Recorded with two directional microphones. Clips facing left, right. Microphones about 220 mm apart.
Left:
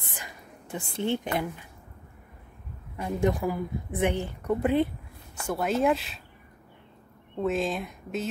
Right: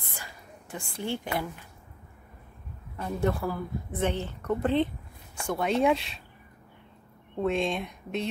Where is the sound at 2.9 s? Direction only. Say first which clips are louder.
Left 2 dB; 15° left (ahead or behind).